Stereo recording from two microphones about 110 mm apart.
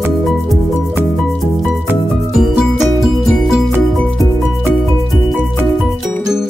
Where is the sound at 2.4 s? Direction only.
Centre (ahead or behind).